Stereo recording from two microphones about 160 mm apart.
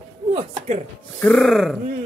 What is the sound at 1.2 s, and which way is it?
Speech, 5° left (ahead or behind).